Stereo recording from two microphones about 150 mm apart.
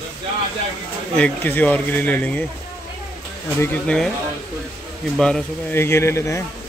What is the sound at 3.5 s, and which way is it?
Speech, 15° left (ahead or behind).